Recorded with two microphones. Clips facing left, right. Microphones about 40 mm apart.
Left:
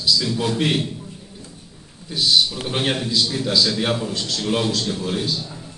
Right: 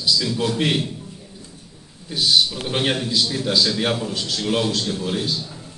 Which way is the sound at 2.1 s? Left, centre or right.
Centre.